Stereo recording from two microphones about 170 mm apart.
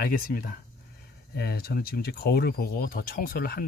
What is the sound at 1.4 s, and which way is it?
Speech, 65° left (ahead or behind).